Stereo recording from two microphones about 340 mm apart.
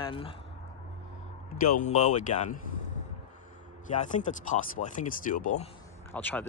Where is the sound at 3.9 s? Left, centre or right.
Left.